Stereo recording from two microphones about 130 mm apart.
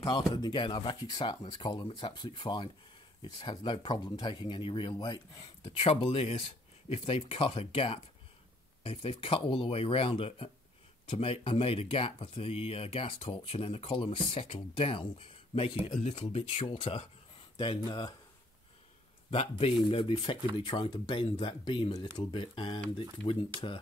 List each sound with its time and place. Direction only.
0.0 s speech: 30° left (ahead or behind)
5.7 s speech: 45° left (ahead or behind)
19.3 s speech: 45° left (ahead or behind)